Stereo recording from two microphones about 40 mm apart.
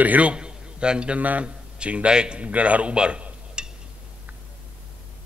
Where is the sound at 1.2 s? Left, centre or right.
Right.